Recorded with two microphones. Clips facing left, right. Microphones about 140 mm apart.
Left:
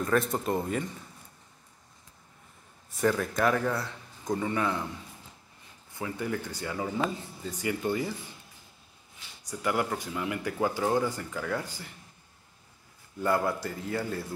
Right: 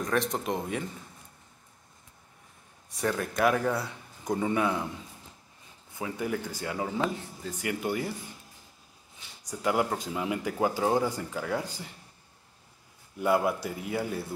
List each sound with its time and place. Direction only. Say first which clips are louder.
0.0 s speech: left 2 dB; 5° left (ahead or behind)
3.0 s speech: left 1 dB; centre (ahead or behind)
5.9 s speech: right 1 dB; 15° right (ahead or behind)
9.5 s speech: right 2 dB; 20° right (ahead or behind)
13.2 s speech: right 2 dB; 15° right (ahead or behind)